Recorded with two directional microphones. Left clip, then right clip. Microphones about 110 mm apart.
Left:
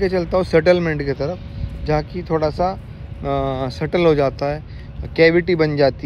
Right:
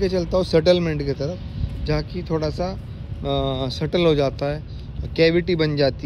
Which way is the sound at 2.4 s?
25° left (ahead or behind).